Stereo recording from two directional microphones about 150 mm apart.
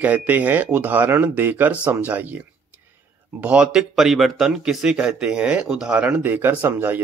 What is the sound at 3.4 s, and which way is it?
Speech, 5° right (ahead or behind).